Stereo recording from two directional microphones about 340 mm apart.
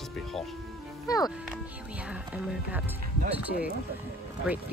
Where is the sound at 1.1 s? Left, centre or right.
Centre.